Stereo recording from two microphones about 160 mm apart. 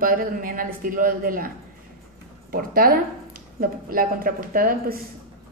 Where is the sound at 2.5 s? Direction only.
65° right (ahead or behind).